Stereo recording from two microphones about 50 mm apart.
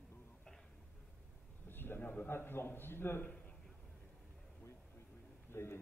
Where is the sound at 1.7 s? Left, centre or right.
Left.